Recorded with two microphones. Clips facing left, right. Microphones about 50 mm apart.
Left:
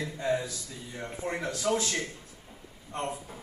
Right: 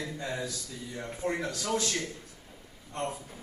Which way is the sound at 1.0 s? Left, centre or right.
Centre.